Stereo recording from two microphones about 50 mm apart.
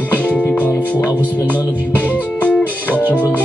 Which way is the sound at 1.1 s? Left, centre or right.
Right.